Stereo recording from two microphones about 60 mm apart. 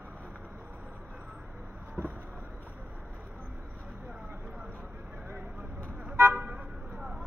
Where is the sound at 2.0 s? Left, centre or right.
Right.